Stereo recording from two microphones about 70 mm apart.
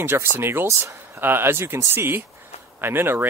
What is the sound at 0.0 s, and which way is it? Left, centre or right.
Speech, right.